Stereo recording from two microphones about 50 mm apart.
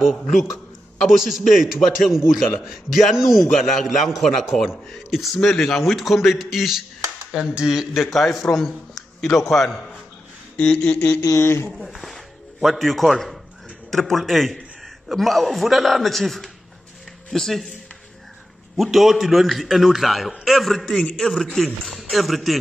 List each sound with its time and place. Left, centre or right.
1.0 s a man's voice: centre
7.9 s a man's voice: centre
10.6 s a sound: left
11.0 s a sound: left
11.3 s speech: left
12.0 s music: centre
13.8 s a man's voice: centre
18.8 s a man's voice: centre